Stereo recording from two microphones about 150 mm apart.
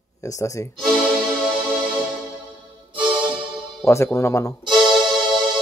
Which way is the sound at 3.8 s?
20° left (ahead or behind).